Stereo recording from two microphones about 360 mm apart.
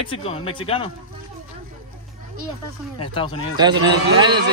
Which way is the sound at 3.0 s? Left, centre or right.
Centre.